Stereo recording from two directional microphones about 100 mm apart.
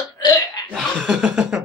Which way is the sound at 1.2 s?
5° right (ahead or behind).